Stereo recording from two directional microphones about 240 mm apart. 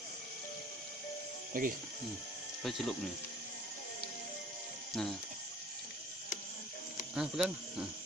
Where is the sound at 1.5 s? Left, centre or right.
Right.